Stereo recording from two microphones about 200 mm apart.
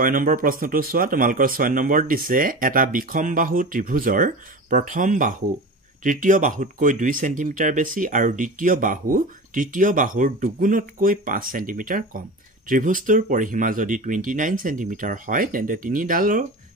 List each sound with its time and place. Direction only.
0.0 s speech: 45° right (ahead or behind)